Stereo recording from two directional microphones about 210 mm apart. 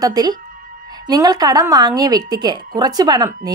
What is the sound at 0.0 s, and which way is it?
A woman's voice, 20° right (ahead or behind).